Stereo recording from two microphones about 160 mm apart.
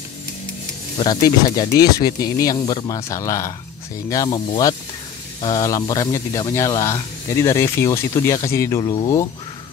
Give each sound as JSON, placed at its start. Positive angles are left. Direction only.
{"t": 0.9, "sound": "speech", "side_deg": 30}